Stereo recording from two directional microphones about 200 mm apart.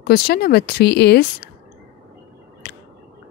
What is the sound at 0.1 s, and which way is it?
Speech, 50° left (ahead or behind).